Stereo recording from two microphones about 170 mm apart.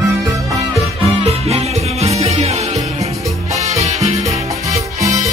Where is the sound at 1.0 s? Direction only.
35° right (ahead or behind).